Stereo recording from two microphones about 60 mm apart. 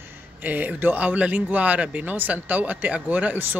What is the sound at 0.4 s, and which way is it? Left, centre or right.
Speech, right.